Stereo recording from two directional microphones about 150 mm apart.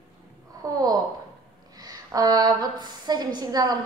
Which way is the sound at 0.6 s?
25° right (ahead or behind).